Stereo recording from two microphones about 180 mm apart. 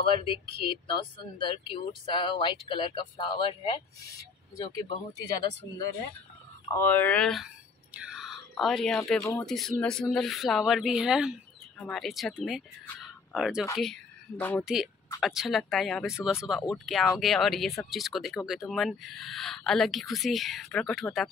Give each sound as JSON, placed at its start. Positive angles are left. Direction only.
{"t": 0.0, "sound": "speech", "side_deg": 30}
{"t": 6.7, "sound": "speech", "side_deg": 10}
{"t": 9.2, "sound": "speech", "side_deg": 20}
{"t": 9.8, "sound": "speech", "side_deg": 5}
{"t": 14.3, "sound": "speech", "side_deg": 10}
{"t": 14.6, "sound": "speech", "side_deg": -5}